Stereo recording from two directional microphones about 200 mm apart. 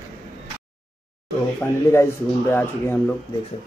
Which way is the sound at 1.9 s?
10° left (ahead or behind).